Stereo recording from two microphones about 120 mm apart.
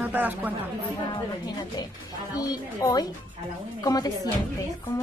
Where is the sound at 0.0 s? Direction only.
15° right (ahead or behind).